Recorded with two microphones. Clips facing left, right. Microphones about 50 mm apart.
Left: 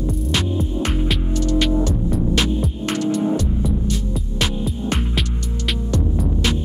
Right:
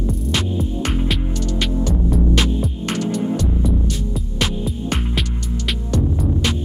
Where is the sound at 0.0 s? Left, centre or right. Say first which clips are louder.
Even; centre.